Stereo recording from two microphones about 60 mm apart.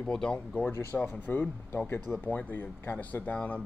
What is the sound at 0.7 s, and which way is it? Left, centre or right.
Speech, left.